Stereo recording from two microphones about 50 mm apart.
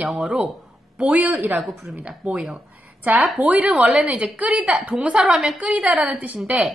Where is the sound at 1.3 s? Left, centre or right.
Right.